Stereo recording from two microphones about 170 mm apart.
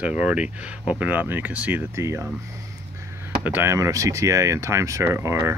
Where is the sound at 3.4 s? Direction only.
10° right (ahead or behind).